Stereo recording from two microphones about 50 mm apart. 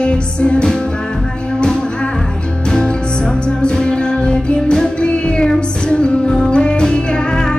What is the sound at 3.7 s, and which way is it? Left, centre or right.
Music, centre.